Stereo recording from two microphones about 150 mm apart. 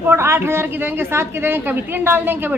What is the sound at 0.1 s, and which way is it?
A woman's voice, 15° right (ahead or behind).